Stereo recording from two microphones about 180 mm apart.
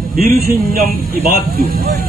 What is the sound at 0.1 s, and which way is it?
Speech, 55° right (ahead or behind).